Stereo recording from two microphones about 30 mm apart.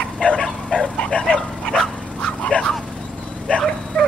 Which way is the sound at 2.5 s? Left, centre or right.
Left.